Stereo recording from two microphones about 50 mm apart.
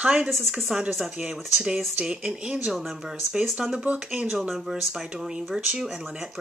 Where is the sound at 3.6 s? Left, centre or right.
Right.